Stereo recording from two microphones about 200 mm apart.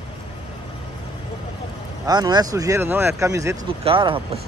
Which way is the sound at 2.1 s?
20° right (ahead or behind).